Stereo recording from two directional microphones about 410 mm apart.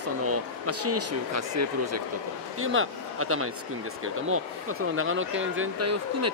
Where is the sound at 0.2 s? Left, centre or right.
Right.